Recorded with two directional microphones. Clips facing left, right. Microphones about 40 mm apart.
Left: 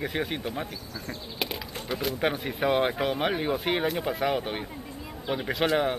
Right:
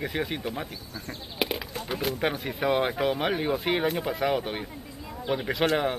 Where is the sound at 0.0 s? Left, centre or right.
Centre.